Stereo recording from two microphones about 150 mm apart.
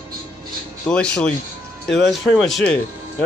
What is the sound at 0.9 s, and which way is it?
Speech, 5° left (ahead or behind).